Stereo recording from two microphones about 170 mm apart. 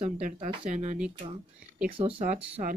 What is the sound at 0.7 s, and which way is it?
Speech, 45° right (ahead or behind).